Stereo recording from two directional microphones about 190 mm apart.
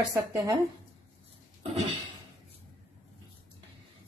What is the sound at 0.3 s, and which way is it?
Speech, 20° right (ahead or behind).